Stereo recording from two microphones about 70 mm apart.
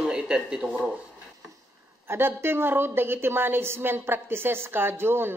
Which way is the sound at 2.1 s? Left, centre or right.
Right.